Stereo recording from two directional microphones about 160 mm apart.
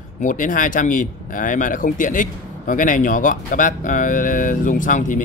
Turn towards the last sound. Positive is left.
turn(degrees=55)  # may be behind; listen again after turning